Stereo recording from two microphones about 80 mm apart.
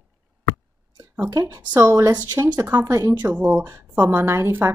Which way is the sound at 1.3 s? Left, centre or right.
Right.